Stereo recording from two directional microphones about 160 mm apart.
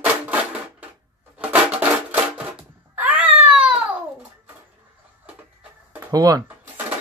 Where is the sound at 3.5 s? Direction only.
5° right (ahead or behind).